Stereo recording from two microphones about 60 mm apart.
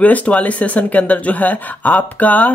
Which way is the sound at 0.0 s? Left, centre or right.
Left.